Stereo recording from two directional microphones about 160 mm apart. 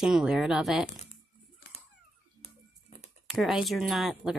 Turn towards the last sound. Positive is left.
turn(degrees=0)  # may be behind; listen again after turning